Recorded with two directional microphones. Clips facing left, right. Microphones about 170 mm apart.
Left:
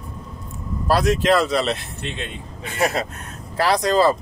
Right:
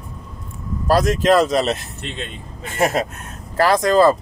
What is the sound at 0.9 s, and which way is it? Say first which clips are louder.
Speech: right 2 dB; 45° right (ahead or behind).